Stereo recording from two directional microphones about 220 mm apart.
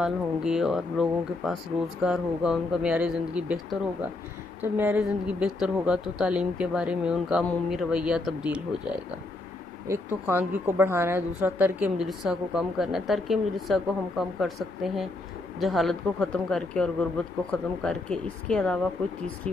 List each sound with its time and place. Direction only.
0.0 s speech: centre (ahead or behind)